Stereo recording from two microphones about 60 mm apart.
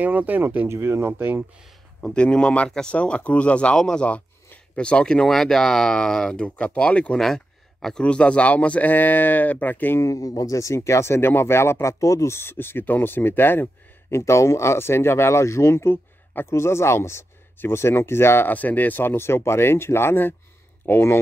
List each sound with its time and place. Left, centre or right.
0.0 s speech: right
0.7 s speech: right
2.0 s speech: centre
7.2 s a sound: centre
8.0 s speech: centre
10.1 s speech: left
12.4 s speech: left
14.1 s speech: left
18.5 s speech: left